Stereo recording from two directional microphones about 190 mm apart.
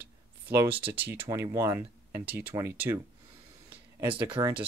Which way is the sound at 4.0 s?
10° right (ahead or behind).